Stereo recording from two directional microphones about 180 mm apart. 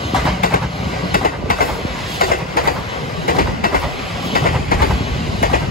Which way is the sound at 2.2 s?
55° left (ahead or behind).